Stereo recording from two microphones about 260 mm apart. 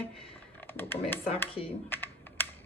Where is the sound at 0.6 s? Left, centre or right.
Centre.